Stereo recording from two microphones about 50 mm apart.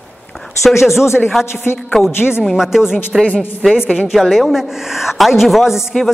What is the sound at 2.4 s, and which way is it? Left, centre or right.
Speech, centre.